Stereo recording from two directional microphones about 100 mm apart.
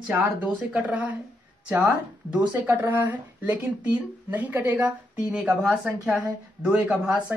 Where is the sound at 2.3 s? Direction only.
20° right (ahead or behind).